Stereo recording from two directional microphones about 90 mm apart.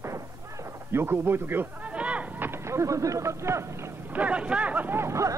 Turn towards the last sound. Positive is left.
turn(degrees=-35)  # may be behind; listen again after turning